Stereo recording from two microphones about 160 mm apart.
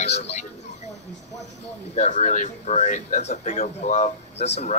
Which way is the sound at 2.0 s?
50° left (ahead or behind).